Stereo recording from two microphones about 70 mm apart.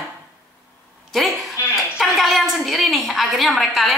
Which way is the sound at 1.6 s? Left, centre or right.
Left.